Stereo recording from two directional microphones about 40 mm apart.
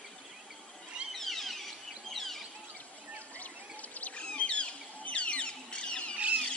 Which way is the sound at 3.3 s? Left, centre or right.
Left.